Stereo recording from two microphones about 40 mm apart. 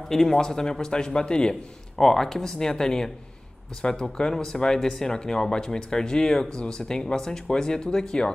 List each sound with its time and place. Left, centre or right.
0.1 s a man's voice: centre